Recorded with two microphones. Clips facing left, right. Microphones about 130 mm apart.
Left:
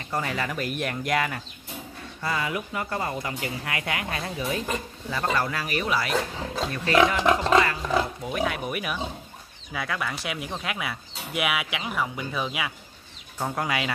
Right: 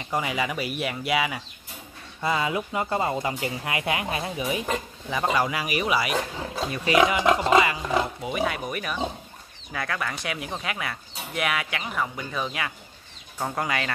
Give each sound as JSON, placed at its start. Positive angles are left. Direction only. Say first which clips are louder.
{"t": 0.1, "sound": "speech", "louder": "right 2 dB", "side_deg": -10}
{"t": 2.2, "sound": "speech", "louder": "right 3 dB", "side_deg": -20}